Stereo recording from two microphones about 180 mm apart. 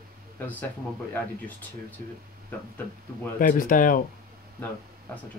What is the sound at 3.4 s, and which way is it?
Speech, 50° left (ahead or behind).